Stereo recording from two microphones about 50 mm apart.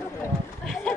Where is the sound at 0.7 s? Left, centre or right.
Centre.